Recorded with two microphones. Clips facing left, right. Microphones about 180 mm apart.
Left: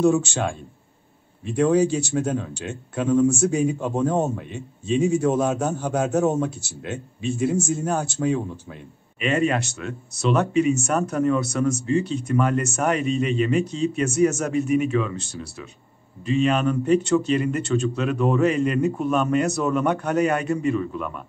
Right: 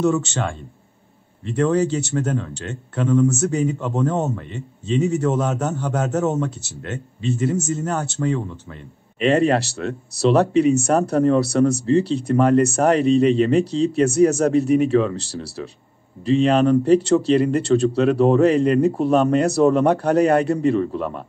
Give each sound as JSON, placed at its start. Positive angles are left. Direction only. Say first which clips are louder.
{"t": 0.0, "sound": "speech", "louder": "left 1 dB", "side_deg": 10}
{"t": 9.2, "sound": "speech", "louder": "right 5 dB", "side_deg": -35}